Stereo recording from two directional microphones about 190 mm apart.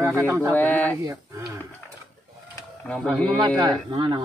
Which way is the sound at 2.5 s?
5° left (ahead or behind).